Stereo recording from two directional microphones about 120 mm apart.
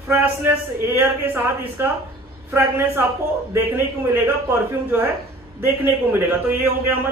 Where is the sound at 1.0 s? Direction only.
20° right (ahead or behind).